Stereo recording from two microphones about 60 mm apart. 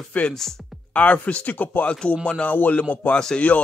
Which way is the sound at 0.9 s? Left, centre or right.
Left.